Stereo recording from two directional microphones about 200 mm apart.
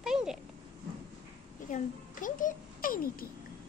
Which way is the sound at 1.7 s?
40° left (ahead or behind).